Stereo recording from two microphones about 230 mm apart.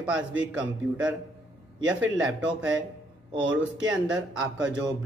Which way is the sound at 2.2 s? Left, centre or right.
Centre.